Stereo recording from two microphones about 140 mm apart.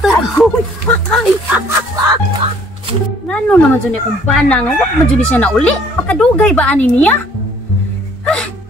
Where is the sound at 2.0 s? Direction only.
30° right (ahead or behind).